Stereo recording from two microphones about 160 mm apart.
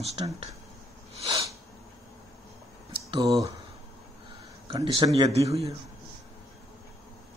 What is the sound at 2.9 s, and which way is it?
Speech, 25° right (ahead or behind).